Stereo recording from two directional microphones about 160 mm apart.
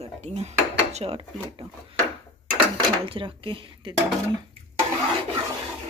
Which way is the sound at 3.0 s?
35° right (ahead or behind).